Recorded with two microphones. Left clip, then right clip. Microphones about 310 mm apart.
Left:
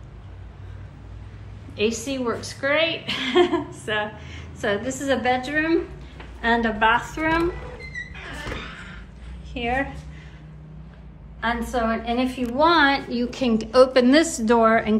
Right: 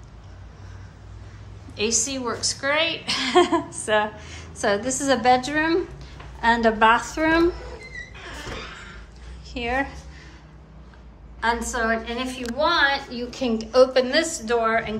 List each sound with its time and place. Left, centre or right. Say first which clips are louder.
1.8 s a woman's voice: even; centre
9.5 s a woman's voice: even; centre
11.4 s a woman's voice: right 1 dB; centre
12.5 s a woman's voice: left 3 dB; left